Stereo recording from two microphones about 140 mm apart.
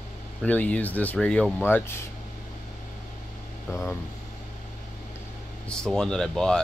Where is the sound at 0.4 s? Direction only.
10° left (ahead or behind).